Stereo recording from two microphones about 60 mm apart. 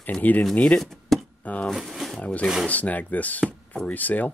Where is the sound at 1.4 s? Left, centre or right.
Left.